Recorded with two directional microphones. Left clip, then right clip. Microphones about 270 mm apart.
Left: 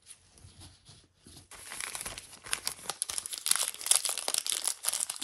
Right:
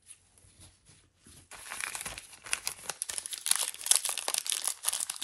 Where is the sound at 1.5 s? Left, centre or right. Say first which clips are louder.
Right 2 dB; centre.